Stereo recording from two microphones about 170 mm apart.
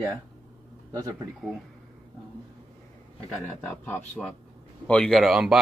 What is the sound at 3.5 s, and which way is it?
Speech, 10° left (ahead or behind).